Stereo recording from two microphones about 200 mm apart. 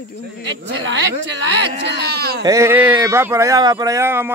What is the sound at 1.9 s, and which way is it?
Speech, 55° right (ahead or behind).